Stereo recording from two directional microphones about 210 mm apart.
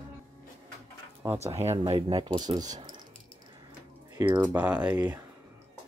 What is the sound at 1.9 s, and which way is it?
Speech, 25° right (ahead or behind).